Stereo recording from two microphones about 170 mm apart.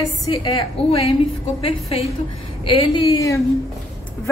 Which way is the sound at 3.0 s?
20° left (ahead or behind).